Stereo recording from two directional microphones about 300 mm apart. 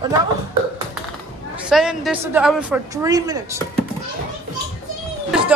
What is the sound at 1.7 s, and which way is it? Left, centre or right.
A woman's voice, centre.